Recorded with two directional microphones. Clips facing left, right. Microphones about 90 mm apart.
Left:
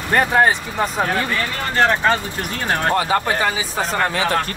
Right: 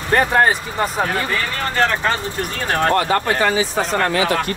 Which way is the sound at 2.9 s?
10° left (ahead or behind).